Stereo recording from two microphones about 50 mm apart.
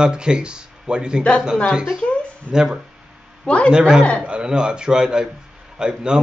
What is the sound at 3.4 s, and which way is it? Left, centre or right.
Speech, left.